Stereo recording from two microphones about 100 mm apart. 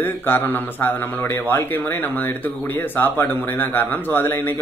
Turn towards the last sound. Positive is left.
turn(degrees=20)  # may be behind; listen again after turning